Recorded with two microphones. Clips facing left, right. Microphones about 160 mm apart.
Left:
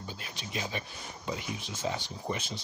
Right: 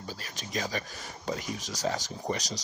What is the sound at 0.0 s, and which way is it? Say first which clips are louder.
Speech: right 1 dB; 40° right (ahead or behind).